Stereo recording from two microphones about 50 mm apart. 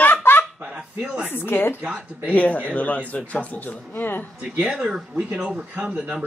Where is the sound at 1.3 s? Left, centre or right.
Left.